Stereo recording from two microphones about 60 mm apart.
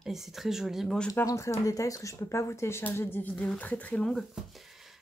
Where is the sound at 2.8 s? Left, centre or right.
Left.